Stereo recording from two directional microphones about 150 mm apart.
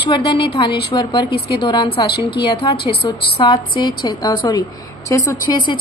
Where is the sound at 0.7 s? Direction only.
90° left.